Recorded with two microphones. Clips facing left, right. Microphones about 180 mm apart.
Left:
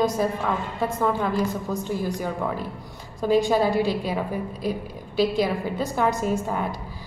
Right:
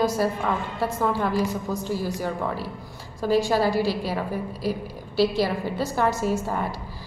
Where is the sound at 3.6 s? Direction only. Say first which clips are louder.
Left 1 dB; 20° left (ahead or behind).